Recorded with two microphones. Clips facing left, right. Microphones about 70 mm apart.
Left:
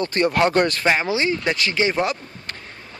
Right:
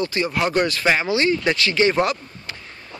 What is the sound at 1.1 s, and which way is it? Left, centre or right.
Speech, left.